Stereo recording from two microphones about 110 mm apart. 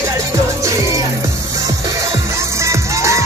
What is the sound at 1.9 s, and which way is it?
Music, 25° right (ahead or behind).